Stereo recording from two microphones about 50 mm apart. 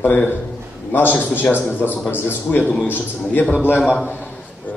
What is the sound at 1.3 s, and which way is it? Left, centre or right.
Speech, left.